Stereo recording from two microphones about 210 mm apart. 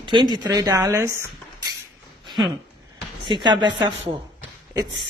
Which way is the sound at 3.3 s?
20° right (ahead or behind).